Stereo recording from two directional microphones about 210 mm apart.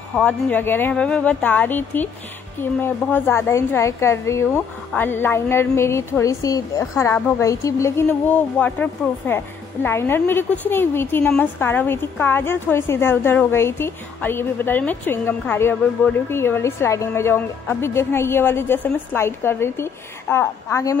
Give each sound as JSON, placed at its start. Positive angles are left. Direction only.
{"t": 0.1, "sound": "a woman's voice", "side_deg": 5}